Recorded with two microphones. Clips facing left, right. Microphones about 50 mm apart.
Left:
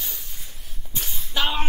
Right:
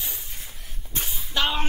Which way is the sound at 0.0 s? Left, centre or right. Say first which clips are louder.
Even; centre.